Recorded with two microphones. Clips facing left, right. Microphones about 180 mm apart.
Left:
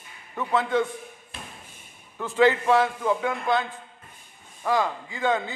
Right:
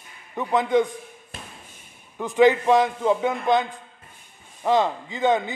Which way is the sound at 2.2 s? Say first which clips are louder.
Right 3 dB; 15° right (ahead or behind).